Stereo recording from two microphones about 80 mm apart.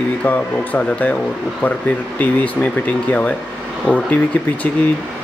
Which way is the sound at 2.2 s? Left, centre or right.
Left.